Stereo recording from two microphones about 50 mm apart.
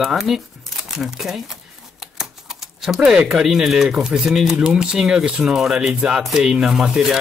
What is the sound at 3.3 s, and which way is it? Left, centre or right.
Speech, centre.